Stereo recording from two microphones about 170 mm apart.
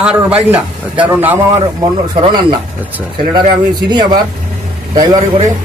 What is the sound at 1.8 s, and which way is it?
Speech, 25° right (ahead or behind).